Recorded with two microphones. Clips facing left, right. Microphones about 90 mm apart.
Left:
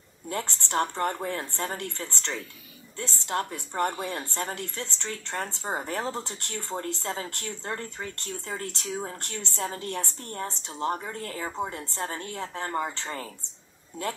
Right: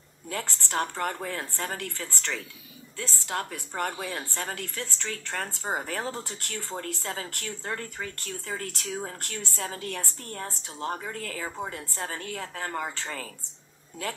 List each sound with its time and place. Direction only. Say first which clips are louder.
0.3 s speech: left 2 dB; 25° left (ahead or behind)